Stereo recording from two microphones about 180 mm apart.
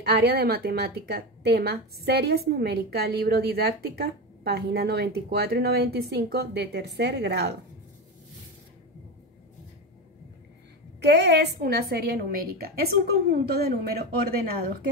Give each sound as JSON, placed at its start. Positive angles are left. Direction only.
{"t": 0.0, "sound": "a woman's voice", "side_deg": -60}
{"t": 11.0, "sound": "a woman's voice", "side_deg": -65}